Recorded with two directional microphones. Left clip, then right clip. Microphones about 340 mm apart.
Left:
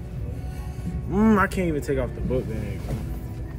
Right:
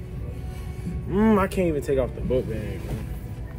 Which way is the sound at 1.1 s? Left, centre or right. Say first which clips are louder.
Even; centre.